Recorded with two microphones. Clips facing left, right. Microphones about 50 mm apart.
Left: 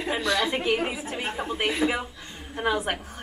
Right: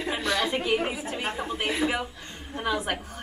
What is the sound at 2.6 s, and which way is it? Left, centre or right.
Speech, left.